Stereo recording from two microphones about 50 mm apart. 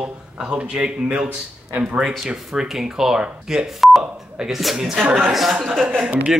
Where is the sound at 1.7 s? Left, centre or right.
Right.